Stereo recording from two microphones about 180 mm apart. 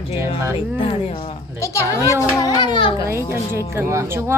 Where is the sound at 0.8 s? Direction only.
30° left (ahead or behind).